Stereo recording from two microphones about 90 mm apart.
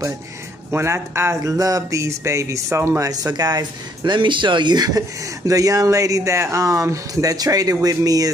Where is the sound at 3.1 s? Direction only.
45° right (ahead or behind).